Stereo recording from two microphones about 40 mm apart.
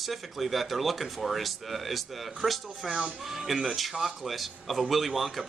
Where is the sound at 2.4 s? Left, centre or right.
Right.